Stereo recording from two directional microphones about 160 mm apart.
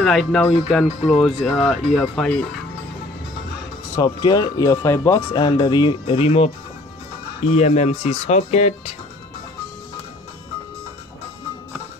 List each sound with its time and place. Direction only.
0.0 s speech: centre (ahead or behind)
3.9 s speech: 25° left (ahead or behind)
5.3 s speech: 30° left (ahead or behind)